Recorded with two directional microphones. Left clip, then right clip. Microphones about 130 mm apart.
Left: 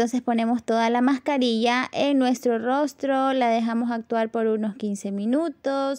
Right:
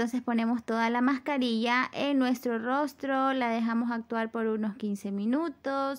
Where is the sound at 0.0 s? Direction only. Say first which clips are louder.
Left 7 dB; 35° left (ahead or behind).